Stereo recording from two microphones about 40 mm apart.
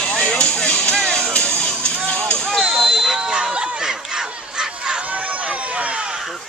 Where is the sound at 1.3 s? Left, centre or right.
Left.